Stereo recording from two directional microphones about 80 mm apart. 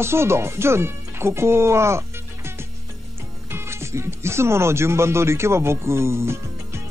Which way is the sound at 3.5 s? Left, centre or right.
Right.